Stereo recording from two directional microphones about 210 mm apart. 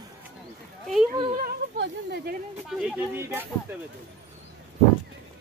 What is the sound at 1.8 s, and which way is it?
Speech, 50° right (ahead or behind).